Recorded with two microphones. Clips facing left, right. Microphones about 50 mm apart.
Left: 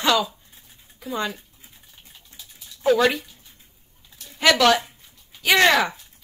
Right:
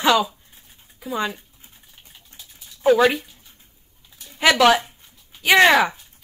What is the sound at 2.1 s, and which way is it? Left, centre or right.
Bathtub, centre.